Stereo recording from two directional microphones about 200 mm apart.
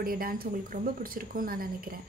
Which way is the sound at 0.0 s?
45° right (ahead or behind).